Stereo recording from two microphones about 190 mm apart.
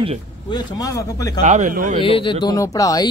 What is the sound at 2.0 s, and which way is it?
Speech, 25° left (ahead or behind).